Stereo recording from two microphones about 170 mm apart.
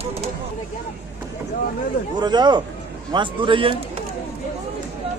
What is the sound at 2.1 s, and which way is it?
A man's voice, 25° right (ahead or behind).